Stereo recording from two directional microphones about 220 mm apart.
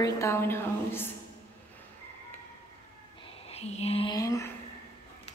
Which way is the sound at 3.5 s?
30° left (ahead or behind).